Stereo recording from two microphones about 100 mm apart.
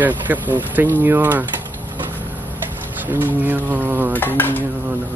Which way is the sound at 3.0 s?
20° right (ahead or behind).